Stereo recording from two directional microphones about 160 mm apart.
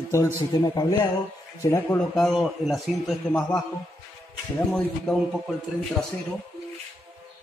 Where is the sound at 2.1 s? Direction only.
Centre (ahead or behind).